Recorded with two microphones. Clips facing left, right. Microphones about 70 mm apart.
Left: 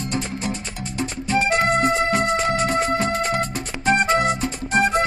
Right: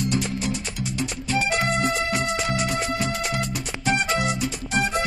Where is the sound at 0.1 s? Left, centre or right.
Left.